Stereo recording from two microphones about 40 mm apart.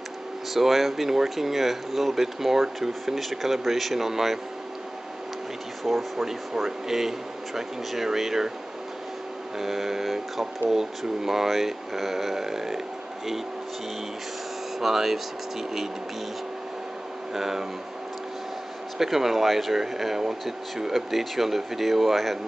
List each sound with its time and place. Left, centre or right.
0.6 s speech: centre
5.9 s speech: centre
9.6 s speech: centre
14.8 s speech: centre
17.3 s speech: centre
18.9 s speech: centre